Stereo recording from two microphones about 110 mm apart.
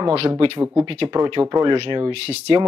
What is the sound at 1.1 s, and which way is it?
Speech, 35° right (ahead or behind).